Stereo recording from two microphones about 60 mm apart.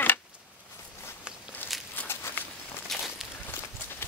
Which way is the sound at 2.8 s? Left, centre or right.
Centre.